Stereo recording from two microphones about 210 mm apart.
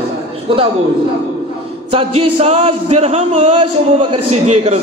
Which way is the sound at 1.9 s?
25° right (ahead or behind).